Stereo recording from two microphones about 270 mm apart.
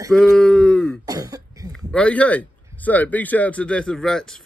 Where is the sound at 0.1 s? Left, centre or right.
Centre.